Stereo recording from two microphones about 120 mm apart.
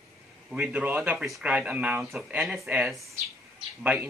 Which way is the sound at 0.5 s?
10° right (ahead or behind).